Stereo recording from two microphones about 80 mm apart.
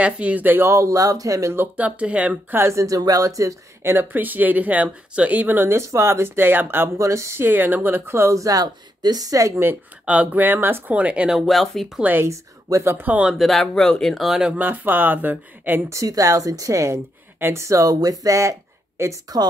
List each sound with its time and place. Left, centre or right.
0.0 s speech: centre; by 1.5 s right
1.5 s speech: right
1.9 s speech: centre
2.5 s speech: right
3.9 s speech: right
7.0 s speech: right
9.6 s speech: right
11.2 s speech: centre
12.0 s speech: right
12.3 s speech: right
12.9 s speech: right
13.3 s speech: centre
14.6 s speech: right
15.9 s speech: right